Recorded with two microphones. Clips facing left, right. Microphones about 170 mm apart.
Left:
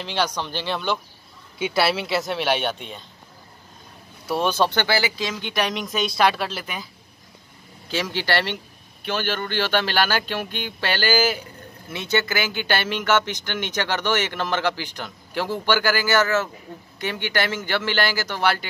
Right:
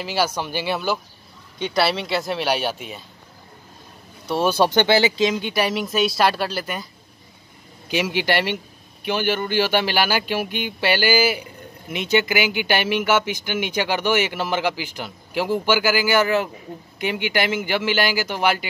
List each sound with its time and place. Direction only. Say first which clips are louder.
0.0 s speech: right 2 dB; 5° right (ahead or behind)
1.6 s a woman's voice: right 1 dB; centre (ahead or behind)
4.5 s speech: right 5 dB; 10° right (ahead or behind)
4.8 s speech: right 6 dB; 25° right (ahead or behind)
5.4 s a woman's voice: right 3 dB; 5° right (ahead or behind)
7.9 s speech: right 3 dB; 15° right (ahead or behind)